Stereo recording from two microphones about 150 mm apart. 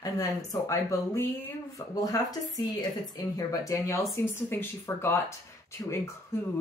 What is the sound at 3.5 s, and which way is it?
Speech, 20° left (ahead or behind).